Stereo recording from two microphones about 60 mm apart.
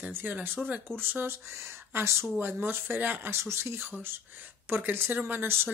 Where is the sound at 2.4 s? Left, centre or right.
Right.